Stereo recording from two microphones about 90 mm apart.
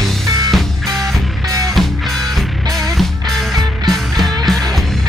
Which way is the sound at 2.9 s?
Centre (ahead or behind).